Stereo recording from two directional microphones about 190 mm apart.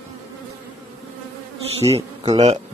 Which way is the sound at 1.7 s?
30° right (ahead or behind).